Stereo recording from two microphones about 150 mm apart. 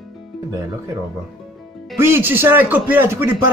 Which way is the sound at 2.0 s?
15° right (ahead or behind).